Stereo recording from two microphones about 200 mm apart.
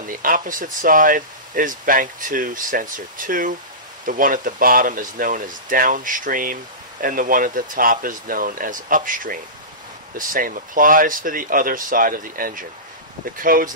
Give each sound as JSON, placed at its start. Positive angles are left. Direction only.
{"t": 0.0, "sound": "speech", "side_deg": -45}